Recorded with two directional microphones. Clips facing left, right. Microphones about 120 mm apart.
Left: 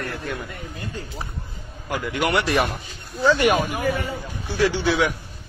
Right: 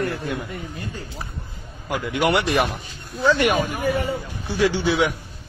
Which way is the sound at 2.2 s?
25° right (ahead or behind).